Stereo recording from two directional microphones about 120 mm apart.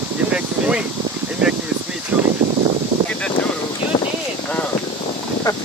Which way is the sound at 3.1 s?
10° left (ahead or behind).